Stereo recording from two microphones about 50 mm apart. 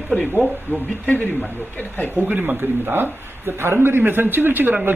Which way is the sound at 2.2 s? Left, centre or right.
Right.